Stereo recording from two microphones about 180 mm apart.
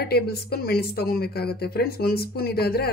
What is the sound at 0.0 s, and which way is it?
A woman's voice, 60° left (ahead or behind).